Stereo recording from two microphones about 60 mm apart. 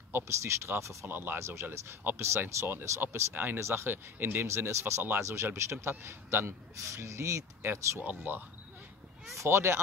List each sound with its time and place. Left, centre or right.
0.1 s a man's voice: right
1.0 s speech: right
1.4 s a man's voice: right
3.5 s a man's voice: right
9.4 s a man's voice: right